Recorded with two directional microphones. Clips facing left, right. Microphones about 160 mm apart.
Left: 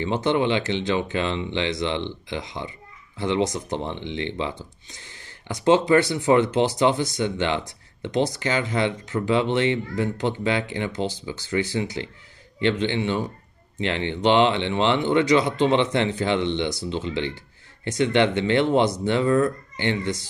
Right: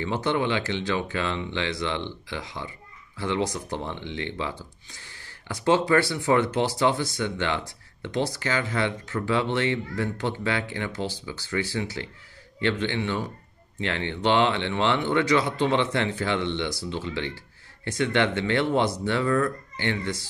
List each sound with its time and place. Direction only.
0.0 s speech: 20° left (ahead or behind)